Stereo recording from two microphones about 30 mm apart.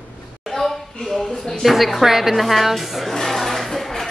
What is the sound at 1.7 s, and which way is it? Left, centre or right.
Speech, centre.